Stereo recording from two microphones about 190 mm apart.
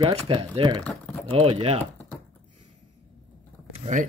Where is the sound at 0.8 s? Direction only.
5° left (ahead or behind).